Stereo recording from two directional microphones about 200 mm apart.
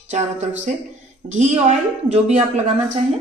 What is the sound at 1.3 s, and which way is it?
A woman's voice, 35° right (ahead or behind).